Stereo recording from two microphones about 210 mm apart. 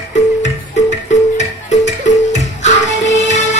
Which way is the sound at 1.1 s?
35° left (ahead or behind).